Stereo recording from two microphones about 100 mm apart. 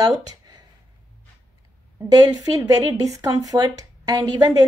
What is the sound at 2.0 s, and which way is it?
A woman's voice, 40° right (ahead or behind).